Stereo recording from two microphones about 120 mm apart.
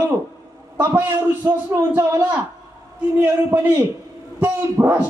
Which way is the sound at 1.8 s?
25° right (ahead or behind).